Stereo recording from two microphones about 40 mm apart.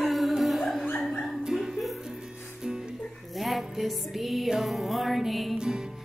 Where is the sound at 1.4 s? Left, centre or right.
Centre.